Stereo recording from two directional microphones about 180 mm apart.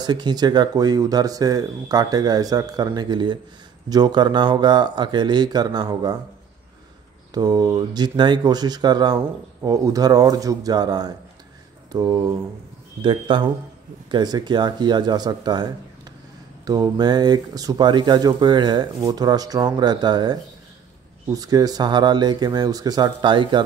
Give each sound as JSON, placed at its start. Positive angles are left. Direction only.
{"t": 0.0, "sound": "speech", "side_deg": -25}
{"t": 7.3, "sound": "speech", "side_deg": -20}